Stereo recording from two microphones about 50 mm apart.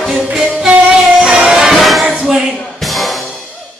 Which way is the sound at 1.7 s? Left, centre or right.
Centre.